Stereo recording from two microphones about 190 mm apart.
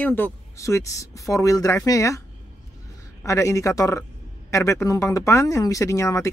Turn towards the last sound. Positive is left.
turn(degrees=15)  # may be behind; listen again after turning